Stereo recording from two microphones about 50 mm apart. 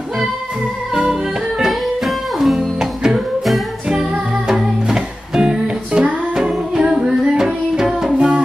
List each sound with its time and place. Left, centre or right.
1.7 s music: centre
4.5 s music: centre